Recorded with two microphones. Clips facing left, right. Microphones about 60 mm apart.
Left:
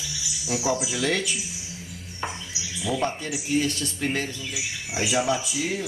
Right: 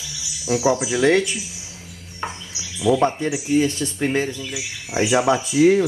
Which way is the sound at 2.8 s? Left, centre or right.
Right.